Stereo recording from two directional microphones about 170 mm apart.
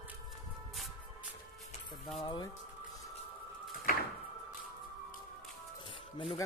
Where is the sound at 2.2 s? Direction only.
25° left (ahead or behind).